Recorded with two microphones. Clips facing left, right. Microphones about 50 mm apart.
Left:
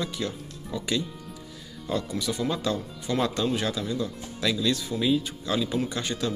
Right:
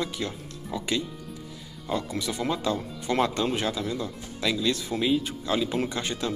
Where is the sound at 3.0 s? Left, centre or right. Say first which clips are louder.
Right 1 dB; right.